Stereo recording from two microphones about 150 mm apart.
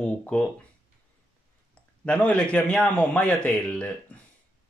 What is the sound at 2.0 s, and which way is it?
Speech, 5° left (ahead or behind).